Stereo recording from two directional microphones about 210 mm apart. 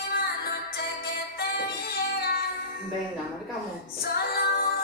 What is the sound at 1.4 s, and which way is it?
Music, 45° left (ahead or behind).